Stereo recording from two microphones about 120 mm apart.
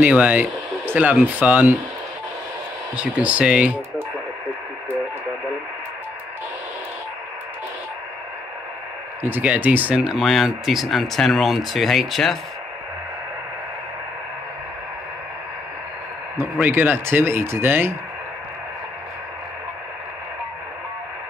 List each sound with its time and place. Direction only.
0.0 s speech: 10° right (ahead or behind)
3.0 s speech: 10° right (ahead or behind)
9.2 s speech: 15° right (ahead or behind)
16.3 s speech: 15° right (ahead or behind)